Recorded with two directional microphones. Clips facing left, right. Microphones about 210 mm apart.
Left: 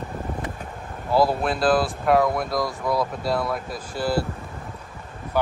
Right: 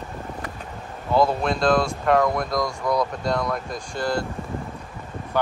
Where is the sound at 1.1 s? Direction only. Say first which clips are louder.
Even; 5° left (ahead or behind).